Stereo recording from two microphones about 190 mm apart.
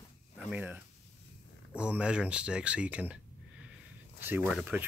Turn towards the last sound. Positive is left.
turn(degrees=-5)  # may be behind; listen again after turning